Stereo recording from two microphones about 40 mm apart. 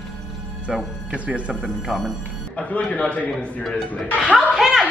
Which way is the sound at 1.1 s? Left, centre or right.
Right.